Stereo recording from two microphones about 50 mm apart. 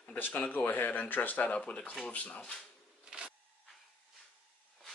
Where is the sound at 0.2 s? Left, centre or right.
Left.